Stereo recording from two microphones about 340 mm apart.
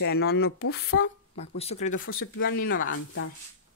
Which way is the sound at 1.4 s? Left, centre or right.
Centre.